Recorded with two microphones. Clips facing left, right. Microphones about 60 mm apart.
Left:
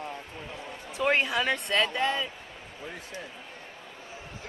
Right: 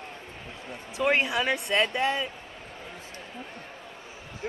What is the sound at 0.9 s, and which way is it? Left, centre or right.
Speech, centre.